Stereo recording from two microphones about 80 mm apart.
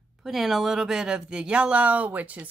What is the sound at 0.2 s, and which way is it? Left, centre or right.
Speech, centre.